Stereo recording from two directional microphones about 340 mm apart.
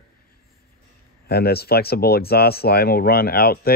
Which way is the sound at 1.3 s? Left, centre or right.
Left.